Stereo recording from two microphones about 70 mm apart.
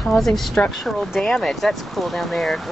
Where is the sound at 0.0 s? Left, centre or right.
Centre.